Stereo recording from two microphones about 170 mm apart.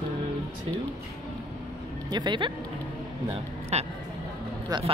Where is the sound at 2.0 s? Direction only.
25° right (ahead or behind).